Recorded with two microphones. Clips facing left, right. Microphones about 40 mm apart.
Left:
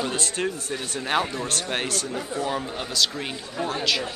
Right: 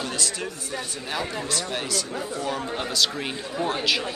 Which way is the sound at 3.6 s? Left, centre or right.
Centre.